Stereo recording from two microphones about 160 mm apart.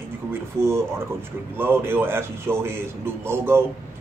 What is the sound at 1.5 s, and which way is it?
A man's voice, 15° right (ahead or behind).